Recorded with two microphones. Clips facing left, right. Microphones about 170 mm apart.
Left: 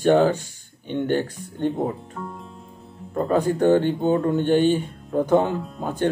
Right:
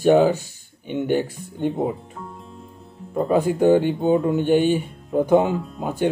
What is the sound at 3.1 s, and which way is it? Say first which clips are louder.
Speech: right 1 dB; 5° right (ahead or behind).